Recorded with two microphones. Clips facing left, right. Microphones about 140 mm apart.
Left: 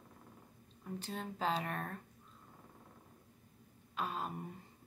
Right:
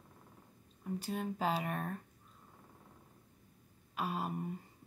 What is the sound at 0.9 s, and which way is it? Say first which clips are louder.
Speech: right 5 dB; 10° right (ahead or behind).